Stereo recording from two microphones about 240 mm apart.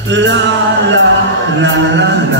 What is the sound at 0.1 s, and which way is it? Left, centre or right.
Male singing, right.